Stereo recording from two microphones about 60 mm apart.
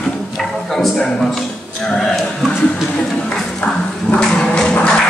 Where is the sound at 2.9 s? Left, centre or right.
Centre.